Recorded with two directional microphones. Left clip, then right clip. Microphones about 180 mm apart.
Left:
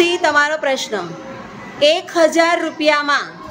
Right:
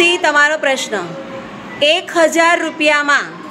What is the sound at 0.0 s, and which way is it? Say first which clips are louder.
A woman's voice: right 3 dB; centre (ahead or behind).